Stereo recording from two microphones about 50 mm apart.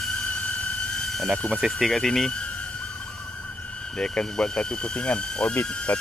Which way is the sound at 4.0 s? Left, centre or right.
Left.